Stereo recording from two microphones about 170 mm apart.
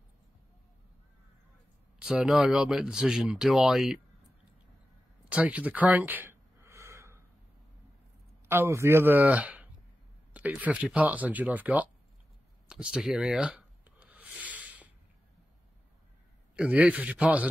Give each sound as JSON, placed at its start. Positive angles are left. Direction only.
{"t": 2.0, "sound": "speech", "side_deg": -5}
{"t": 5.3, "sound": "a sound", "side_deg": -10}
{"t": 8.5, "sound": "speech", "side_deg": -15}
{"t": 12.6, "sound": "rub", "side_deg": -5}
{"t": 16.5, "sound": "speech", "side_deg": -5}